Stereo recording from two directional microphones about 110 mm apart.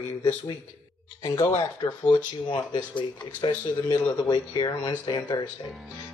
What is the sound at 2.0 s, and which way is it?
Speech, 45° left (ahead or behind).